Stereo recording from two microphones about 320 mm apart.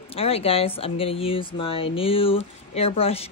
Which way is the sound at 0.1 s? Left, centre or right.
Centre.